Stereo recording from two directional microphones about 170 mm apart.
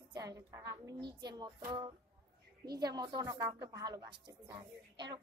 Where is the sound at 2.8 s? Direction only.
25° right (ahead or behind).